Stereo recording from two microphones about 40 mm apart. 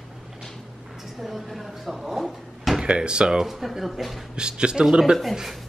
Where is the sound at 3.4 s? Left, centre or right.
Centre.